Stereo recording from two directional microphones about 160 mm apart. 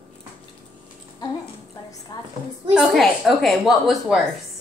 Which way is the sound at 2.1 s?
25° left (ahead or behind).